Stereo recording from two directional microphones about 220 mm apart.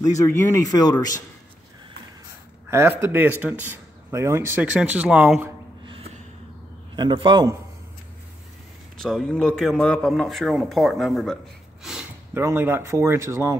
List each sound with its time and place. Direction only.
0.0 s speech: 10° left (ahead or behind)
2.7 s speech: 10° right (ahead or behind)
5.9 s gasp: 25° right (ahead or behind)
7.0 s a man's voice: 20° right (ahead or behind)
8.9 s speech: 5° left (ahead or behind)